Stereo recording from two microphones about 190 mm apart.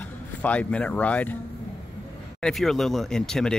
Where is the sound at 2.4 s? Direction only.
Centre (ahead or behind).